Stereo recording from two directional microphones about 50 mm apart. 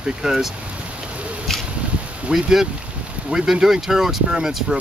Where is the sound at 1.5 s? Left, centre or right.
Centre.